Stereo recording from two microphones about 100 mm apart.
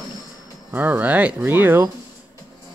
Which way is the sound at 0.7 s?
15° right (ahead or behind).